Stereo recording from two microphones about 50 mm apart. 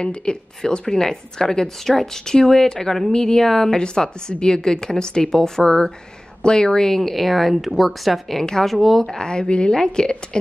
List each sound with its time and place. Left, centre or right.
0.0 s a woman's voice: centre
8.4 s a woman's voice: centre